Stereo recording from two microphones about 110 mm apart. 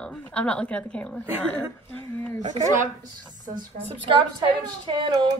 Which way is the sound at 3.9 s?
45° right (ahead or behind).